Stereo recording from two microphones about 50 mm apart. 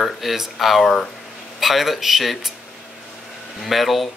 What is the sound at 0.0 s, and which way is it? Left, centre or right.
Speech, centre.